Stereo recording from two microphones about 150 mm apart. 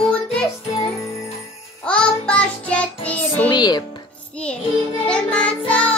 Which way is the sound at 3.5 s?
30° left (ahead or behind).